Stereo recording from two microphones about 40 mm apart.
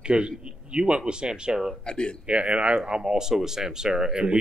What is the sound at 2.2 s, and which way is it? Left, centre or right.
Speech, right.